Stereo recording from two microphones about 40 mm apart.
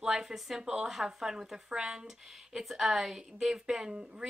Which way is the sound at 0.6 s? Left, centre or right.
Centre.